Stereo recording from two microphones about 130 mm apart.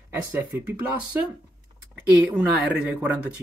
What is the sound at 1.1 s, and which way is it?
Speech, 20° right (ahead or behind).